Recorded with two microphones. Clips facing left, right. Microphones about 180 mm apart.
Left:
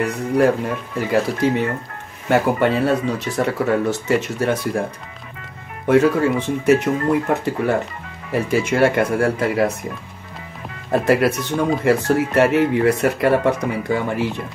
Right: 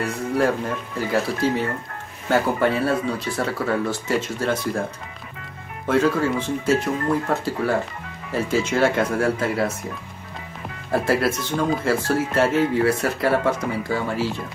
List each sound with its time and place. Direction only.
1.1 s speech: 15° left (ahead or behind)
5.9 s speech: 15° left (ahead or behind)
10.9 s speech: 20° left (ahead or behind)